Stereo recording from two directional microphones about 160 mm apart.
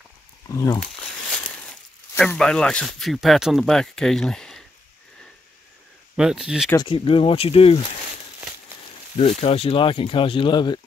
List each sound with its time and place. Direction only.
0.5 s speech: 20° left (ahead or behind)
1.6 s speech: 5° left (ahead or behind)
6.1 s speech: 5° right (ahead or behind)
6.8 s speech: 35° left (ahead or behind)
9.4 s speech: 40° left (ahead or behind)